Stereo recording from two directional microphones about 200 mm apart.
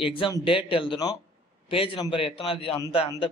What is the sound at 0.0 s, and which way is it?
A man's voice, 25° left (ahead or behind).